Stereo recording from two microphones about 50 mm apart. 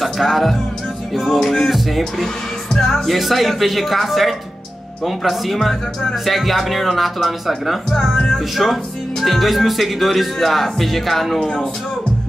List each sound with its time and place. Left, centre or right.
0.0 s speech: centre
11.3 s speech: centre